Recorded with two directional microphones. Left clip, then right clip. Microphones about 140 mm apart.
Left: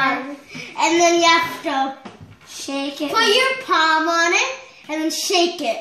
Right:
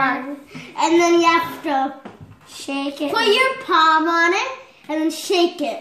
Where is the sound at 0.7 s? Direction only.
10° left (ahead or behind).